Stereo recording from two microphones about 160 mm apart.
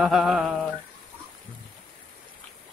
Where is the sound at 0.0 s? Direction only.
Centre (ahead or behind).